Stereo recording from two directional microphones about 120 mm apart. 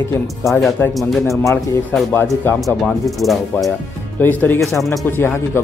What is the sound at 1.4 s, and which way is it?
Speech, 25° left (ahead or behind).